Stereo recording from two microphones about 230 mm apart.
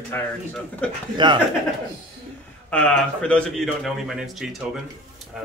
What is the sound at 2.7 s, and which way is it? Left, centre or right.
Speech, centre.